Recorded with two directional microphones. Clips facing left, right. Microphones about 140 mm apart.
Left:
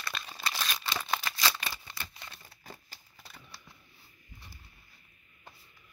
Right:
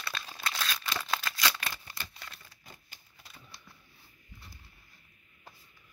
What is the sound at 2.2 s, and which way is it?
Crumpling, 25° left (ahead or behind).